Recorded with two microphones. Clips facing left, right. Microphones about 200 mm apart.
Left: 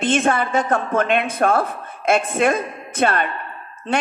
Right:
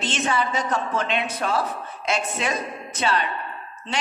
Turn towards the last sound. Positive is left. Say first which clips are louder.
# left 6 dB
turn(degrees=55)  # may be behind; listen again after turning